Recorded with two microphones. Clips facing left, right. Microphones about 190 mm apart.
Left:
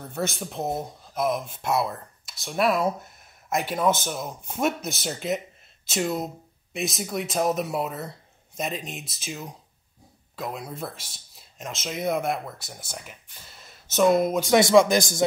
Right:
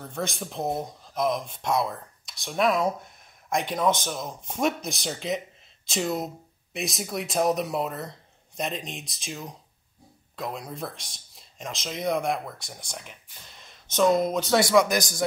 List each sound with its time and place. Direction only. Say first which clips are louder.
0.0 s speech: left 2 dB; 5° left (ahead or behind)
14.6 s a man's voice: left 4 dB; 25° left (ahead or behind)